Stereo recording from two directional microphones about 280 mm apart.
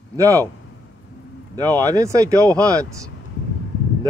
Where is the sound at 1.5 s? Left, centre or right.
Centre.